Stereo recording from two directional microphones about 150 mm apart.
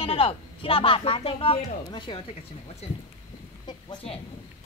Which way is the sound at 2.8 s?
45° left (ahead or behind).